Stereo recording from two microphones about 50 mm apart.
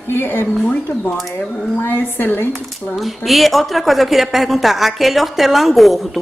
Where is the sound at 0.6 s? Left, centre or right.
Left.